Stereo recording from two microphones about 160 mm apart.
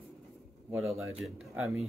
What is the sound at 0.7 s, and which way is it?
Speech, 5° right (ahead or behind).